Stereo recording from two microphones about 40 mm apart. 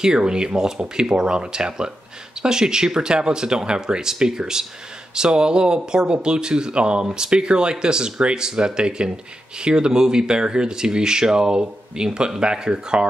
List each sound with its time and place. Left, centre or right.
0.0 s speech: centre